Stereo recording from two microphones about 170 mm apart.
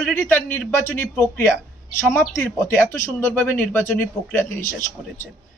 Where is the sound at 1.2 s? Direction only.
10° left (ahead or behind).